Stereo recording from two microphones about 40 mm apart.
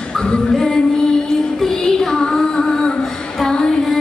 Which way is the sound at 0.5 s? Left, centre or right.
Centre.